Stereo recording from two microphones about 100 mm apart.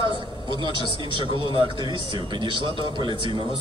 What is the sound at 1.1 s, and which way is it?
A man's voice, 60° right (ahead or behind).